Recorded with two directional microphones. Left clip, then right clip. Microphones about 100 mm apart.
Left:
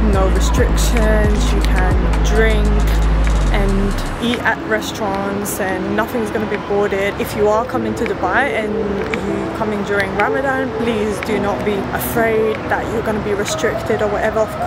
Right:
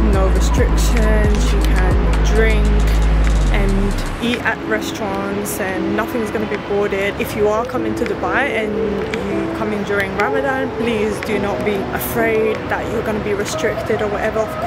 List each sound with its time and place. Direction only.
0.9 s speech: centre (ahead or behind)
6.8 s speech: 10° left (ahead or behind)
10.2 s speech: 5° left (ahead or behind)
12.2 s speech: centre (ahead or behind)